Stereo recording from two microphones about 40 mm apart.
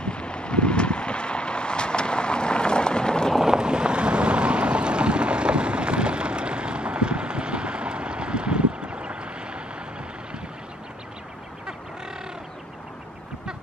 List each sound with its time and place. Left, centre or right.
0.0 s vehicle: left
3.4 s boat: right